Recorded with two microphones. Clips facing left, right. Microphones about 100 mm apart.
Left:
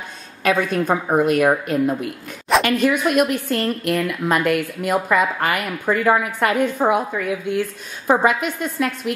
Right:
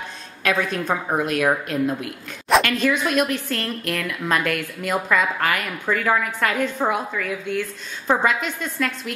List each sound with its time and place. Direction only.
0.4 s a woman's voice: 5° left (ahead or behind)